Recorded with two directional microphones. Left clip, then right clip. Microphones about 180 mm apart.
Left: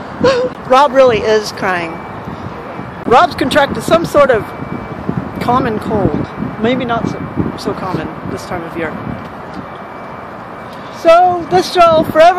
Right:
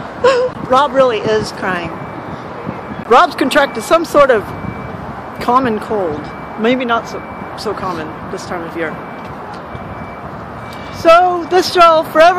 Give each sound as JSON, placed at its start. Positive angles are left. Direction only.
{"t": 0.2, "sound": "speech", "side_deg": 0}
{"t": 0.7, "sound": "speech", "side_deg": 35}
{"t": 3.1, "sound": "speech", "side_deg": -5}
{"t": 5.4, "sound": "speech", "side_deg": -5}
{"t": 7.6, "sound": "speech", "side_deg": 0}
{"t": 11.0, "sound": "speech", "side_deg": -10}